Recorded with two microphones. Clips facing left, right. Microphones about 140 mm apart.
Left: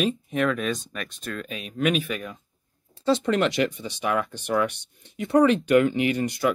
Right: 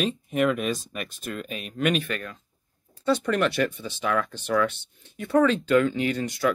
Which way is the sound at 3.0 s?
25° left (ahead or behind).